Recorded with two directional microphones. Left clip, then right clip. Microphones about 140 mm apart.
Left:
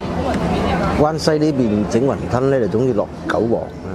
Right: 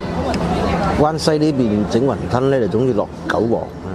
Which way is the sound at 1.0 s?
25° right (ahead or behind).